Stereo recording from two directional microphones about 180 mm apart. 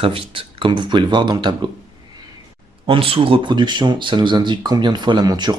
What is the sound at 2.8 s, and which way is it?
Speech, 30° right (ahead or behind).